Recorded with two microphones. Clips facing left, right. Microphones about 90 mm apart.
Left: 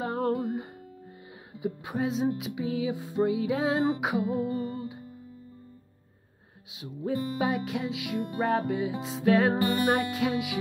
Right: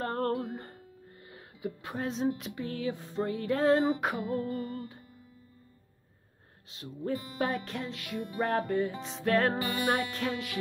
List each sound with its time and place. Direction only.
0.0 s music: 5° left (ahead or behind)
1.5 s music: 40° left (ahead or behind)
2.0 s music: 5° left (ahead or behind)
6.7 s music: 5° left (ahead or behind)